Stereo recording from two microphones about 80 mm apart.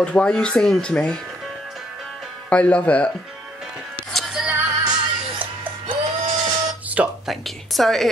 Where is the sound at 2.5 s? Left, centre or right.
Centre.